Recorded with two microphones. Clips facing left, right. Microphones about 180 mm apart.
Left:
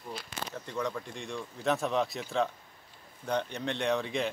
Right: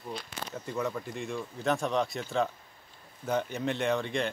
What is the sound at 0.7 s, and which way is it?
A man's voice, 5° right (ahead or behind).